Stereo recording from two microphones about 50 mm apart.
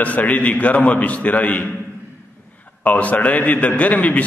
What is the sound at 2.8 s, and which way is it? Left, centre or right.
A man's voice, left.